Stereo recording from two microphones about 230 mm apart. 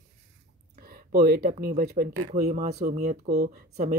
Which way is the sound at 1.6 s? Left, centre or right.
Right.